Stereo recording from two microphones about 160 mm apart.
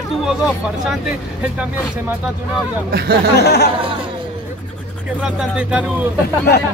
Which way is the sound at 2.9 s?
75° right (ahead or behind).